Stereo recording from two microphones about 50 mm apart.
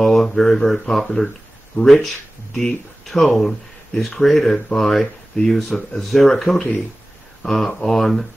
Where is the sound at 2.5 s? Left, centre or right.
Centre.